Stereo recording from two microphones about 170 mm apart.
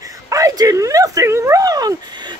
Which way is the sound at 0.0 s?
20° right (ahead or behind).